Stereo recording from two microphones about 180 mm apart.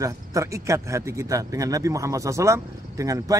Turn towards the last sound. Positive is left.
turn(degrees=-20)  # may be behind; listen again after turning